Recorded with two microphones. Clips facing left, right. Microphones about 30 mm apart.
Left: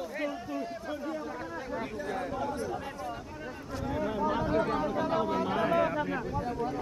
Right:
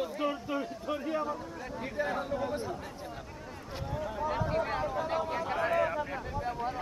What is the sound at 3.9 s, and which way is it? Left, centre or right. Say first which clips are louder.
Speech: left 5 dB; left.